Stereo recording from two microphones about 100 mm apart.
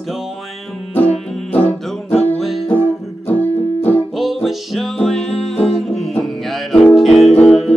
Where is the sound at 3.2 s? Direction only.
20° left (ahead or behind).